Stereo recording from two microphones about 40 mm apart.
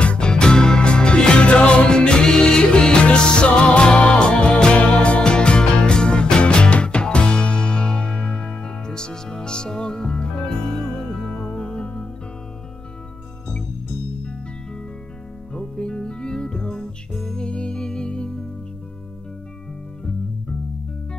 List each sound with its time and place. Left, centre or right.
0.0 s music: left
15.5 s music: left
17.1 s music: centre
17.5 s music: left